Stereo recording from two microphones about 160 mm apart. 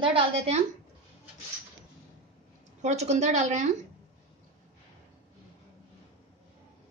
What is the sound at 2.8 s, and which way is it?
Speech, 45° right (ahead or behind).